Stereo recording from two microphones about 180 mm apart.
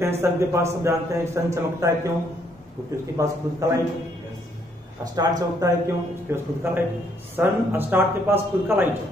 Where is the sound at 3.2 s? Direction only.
20° right (ahead or behind).